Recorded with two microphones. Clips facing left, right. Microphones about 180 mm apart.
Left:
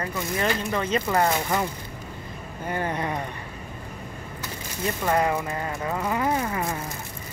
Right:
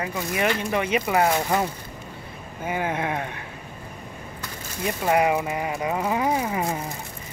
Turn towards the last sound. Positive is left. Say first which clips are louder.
# right 1 dB
turn(degrees=-15)  # may be behind; listen again after turning